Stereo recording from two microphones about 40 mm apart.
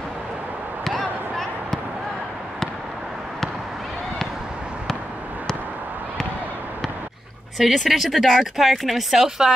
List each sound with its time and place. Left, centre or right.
0.8 s basketball bounce: centre
7.5 s speech: centre